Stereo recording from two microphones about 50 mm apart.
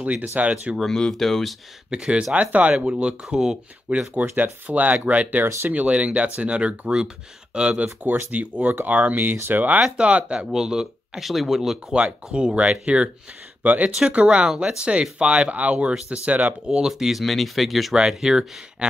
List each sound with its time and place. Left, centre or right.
0.4 s speech: right
0.7 s speech: centre
1.9 s speech: centre
2.3 s speech: right
2.8 s speech: right
4.1 s speech: right
9.9 s speech: right; by 11.8 s centre
11.9 s speech: centre
13.6 s speech: right
13.9 s speech: centre
17.2 s speech: centre
17.9 s speech: centre